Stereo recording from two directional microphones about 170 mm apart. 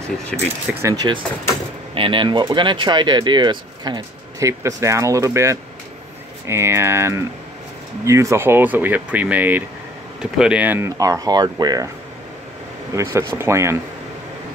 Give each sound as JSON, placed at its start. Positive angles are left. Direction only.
{"t": 0.3, "sound": "speech", "side_deg": 5}
{"t": 0.8, "sound": "speech", "side_deg": -25}
{"t": 12.9, "sound": "speech", "side_deg": -15}